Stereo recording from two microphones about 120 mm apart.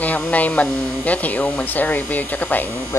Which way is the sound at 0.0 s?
15° left (ahead or behind).